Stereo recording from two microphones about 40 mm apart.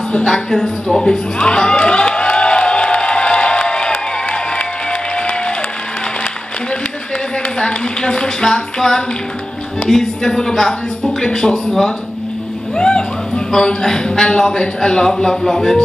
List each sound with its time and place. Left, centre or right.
0.1 s a man's voice: centre
1.4 s crowd: left
7.5 s a man's voice: centre
12.7 s a man's voice: left